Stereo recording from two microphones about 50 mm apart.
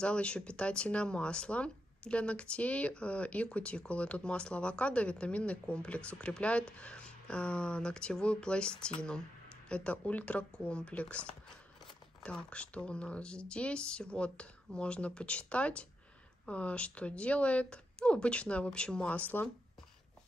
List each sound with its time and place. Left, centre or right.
0.0 s speech: left